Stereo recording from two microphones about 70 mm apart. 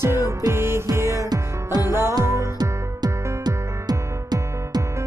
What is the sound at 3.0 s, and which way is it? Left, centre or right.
Music, right.